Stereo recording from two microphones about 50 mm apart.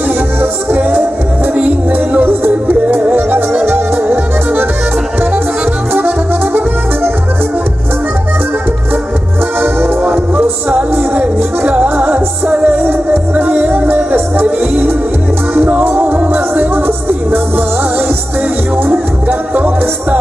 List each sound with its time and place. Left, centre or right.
0.4 s music: right
3.0 s music: right
5.9 s saxophone: right
9.6 s music: right
12.8 s music: right
13.7 s music: right
15.5 s music: right
18.9 s music: right